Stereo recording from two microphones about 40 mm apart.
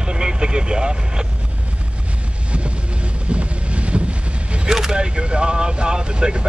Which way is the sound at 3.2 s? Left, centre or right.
Right.